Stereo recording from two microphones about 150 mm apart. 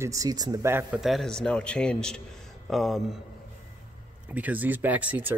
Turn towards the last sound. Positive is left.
turn(degrees=-10)  # may be behind; listen again after turning